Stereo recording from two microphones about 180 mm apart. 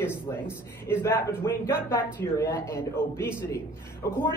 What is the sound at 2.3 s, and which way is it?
Speech, 15° left (ahead or behind).